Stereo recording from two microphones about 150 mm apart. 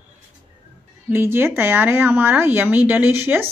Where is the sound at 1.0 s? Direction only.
15° right (ahead or behind).